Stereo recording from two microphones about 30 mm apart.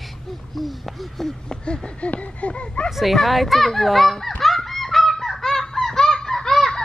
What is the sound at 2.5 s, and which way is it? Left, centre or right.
Speech, left.